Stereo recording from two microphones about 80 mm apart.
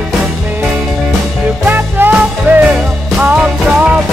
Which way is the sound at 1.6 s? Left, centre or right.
Right.